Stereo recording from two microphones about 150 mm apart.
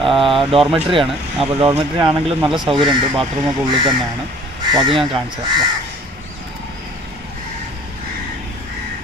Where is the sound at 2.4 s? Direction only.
Centre (ahead or behind).